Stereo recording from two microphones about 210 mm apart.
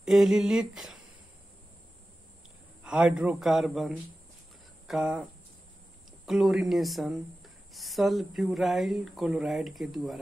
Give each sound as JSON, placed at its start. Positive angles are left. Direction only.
{"t": 0.0, "sound": "speech", "side_deg": 0}
{"t": 2.8, "sound": "speech", "side_deg": -5}
{"t": 6.2, "sound": "speech", "side_deg": 0}